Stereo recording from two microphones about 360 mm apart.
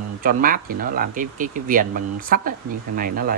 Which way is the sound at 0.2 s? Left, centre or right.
Right.